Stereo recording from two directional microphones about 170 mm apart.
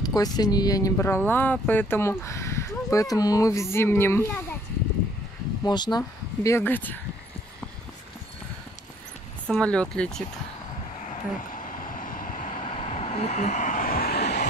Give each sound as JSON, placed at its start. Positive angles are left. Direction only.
{"t": 0.0, "sound": "speech", "side_deg": 25}
{"t": 5.7, "sound": "speech", "side_deg": 25}
{"t": 9.5, "sound": "speech", "side_deg": 5}
{"t": 11.1, "sound": "vehicle", "side_deg": 50}